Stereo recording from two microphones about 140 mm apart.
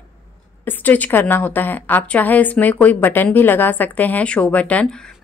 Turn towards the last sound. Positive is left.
turn(degrees=10)  # may be behind; listen again after turning